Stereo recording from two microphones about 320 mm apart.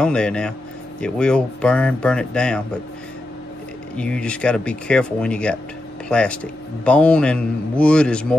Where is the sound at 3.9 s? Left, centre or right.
Centre.